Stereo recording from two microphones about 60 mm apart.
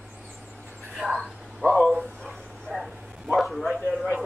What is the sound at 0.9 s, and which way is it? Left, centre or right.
Whispering, centre.